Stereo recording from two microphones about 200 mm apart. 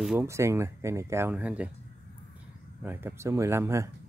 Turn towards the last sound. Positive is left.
turn(degrees=-15)  # may be behind; listen again after turning